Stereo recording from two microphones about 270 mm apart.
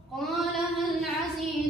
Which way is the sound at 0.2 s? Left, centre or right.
Centre.